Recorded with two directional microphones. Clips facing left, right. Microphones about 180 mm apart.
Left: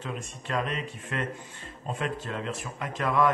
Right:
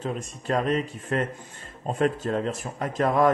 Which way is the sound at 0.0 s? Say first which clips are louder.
Right 6 dB; 40° right (ahead or behind).